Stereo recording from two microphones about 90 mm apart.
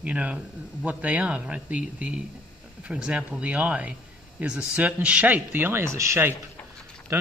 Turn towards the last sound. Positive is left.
turn(degrees=-30)  # may be behind; listen again after turning